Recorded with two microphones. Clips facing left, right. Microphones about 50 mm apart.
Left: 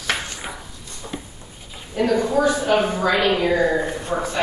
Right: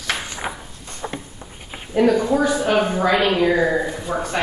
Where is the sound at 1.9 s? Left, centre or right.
Centre.